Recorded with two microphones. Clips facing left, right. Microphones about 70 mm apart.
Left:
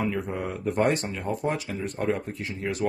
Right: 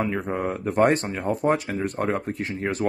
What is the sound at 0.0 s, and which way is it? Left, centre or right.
Speech, right.